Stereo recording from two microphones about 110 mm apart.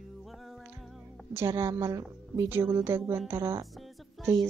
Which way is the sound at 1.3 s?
25° right (ahead or behind).